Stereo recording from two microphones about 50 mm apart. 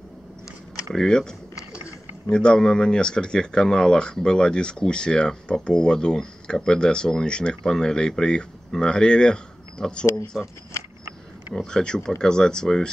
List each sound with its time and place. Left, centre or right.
0.9 s speech: centre
10.3 s speech: centre
11.5 s speech: centre